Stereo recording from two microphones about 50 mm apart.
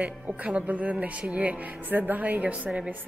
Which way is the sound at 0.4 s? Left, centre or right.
Right.